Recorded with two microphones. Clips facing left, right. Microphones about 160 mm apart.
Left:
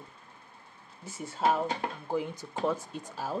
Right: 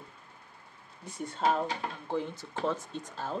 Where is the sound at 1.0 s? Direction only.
5° left (ahead or behind).